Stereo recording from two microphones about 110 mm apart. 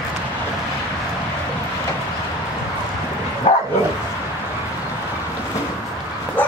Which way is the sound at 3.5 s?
70° left (ahead or behind).